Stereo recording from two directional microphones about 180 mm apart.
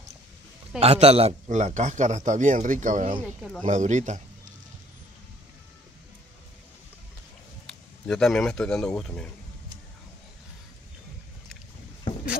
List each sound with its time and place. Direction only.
0.7 s a man's voice: 35° right (ahead or behind)
7.6 s speech: centre (ahead or behind)